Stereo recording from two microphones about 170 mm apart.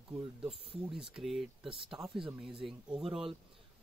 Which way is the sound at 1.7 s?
30° right (ahead or behind).